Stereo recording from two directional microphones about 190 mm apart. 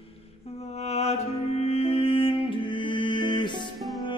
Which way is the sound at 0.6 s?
35° left (ahead or behind).